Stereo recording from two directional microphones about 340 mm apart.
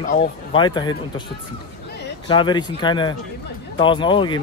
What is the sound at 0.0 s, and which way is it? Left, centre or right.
Speech, centre.